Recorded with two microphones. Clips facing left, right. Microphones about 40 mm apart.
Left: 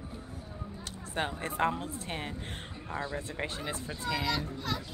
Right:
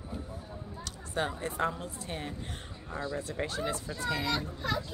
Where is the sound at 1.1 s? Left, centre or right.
Left.